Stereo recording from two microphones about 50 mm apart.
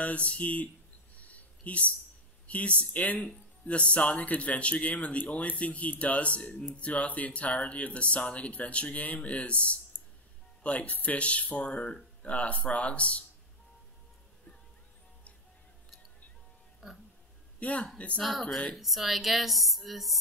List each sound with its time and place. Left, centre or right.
0.0 s speech: left
1.2 s a sound: left
2.4 s speech: left
16.8 s speech: centre
17.6 s speech: left
18.2 s speech: centre